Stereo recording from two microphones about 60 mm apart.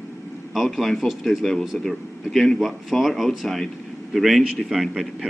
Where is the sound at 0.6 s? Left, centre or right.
Centre.